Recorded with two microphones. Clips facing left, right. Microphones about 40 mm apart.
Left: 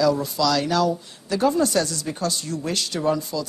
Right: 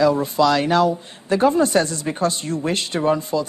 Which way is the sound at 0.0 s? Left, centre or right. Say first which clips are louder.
Right 4 dB; right.